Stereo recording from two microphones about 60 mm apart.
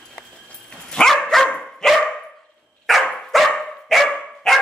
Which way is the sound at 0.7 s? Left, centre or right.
Centre.